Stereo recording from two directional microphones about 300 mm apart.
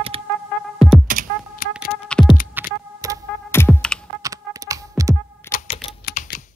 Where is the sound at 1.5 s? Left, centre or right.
Left.